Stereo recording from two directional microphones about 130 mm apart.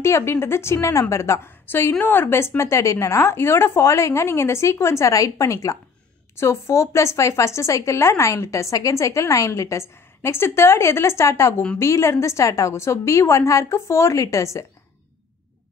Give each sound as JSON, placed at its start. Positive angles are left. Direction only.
{"t": 0.0, "sound": "a woman's voice", "side_deg": 20}